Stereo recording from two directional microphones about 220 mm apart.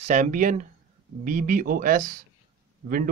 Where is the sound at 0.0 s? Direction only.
35° right (ahead or behind).